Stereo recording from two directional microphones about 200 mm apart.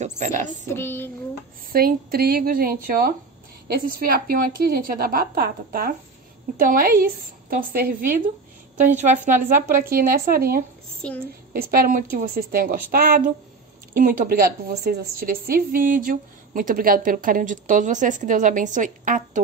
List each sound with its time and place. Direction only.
0.0 s a sound: 40° right (ahead or behind)
0.7 s child singing: 10° left (ahead or behind)
1.7 s a woman's voice: 45° right (ahead or behind)
8.9 s a woman's voice: 40° right (ahead or behind)